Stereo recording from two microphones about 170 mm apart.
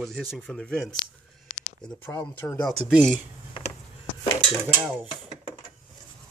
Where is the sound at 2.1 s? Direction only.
15° left (ahead or behind).